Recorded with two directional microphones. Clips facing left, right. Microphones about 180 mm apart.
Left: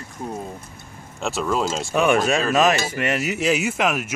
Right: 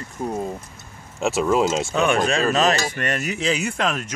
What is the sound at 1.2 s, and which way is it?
Speech, 5° right (ahead or behind).